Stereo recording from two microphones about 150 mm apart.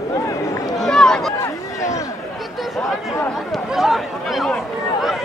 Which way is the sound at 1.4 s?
20° left (ahead or behind).